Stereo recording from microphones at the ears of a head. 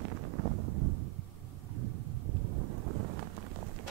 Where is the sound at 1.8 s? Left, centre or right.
Right.